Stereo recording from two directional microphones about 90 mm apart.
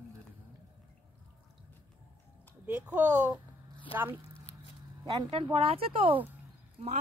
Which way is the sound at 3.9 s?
90° left.